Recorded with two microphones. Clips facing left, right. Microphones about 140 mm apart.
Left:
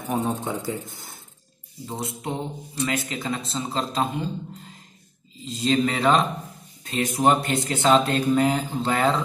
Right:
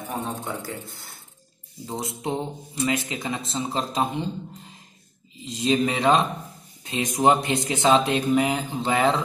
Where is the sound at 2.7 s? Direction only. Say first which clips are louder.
Right 1 dB; 20° right (ahead or behind).